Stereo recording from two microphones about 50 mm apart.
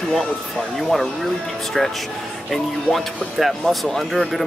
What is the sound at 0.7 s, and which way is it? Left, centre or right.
Speech, centre.